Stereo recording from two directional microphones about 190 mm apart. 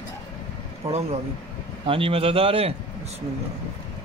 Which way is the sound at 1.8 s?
30° right (ahead or behind).